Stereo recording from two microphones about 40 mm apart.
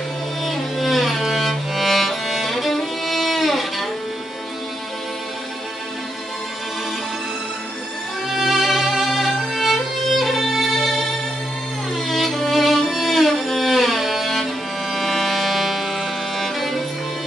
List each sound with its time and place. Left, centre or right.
0.4 s music: centre
8.3 s violin: centre
12.3 s music: centre